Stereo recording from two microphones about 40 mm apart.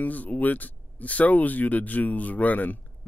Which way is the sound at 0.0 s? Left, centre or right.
Left.